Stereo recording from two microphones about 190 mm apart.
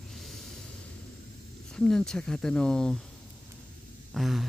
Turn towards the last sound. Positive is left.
turn(degrees=0)  # may be behind; listen again after turning